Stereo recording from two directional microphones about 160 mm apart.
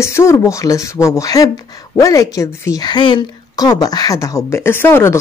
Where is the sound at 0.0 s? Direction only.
15° left (ahead or behind).